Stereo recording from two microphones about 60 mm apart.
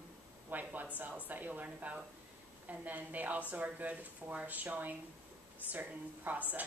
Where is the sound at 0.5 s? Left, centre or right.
Right.